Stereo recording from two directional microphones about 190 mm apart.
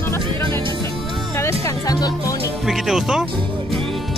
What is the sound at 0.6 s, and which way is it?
Music, 25° right (ahead or behind).